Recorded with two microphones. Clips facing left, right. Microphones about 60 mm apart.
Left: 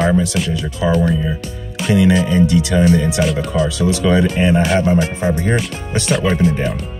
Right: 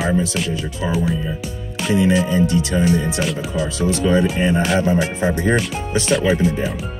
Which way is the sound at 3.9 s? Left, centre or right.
Left.